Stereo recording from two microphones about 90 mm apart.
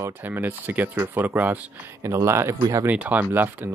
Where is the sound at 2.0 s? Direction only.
30° right (ahead or behind).